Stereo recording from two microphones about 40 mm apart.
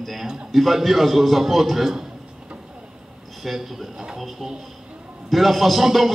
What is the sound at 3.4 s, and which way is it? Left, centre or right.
Speech, centre.